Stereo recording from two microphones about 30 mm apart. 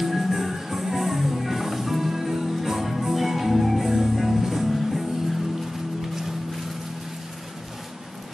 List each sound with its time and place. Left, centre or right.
0.0 s music: centre